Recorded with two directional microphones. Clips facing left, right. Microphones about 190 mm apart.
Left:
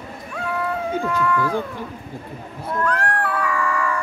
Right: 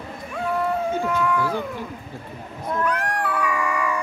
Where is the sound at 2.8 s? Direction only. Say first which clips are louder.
Left 2 dB; 15° right (ahead or behind).